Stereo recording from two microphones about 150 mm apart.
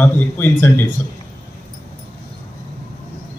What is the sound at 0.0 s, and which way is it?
Speech, 15° left (ahead or behind).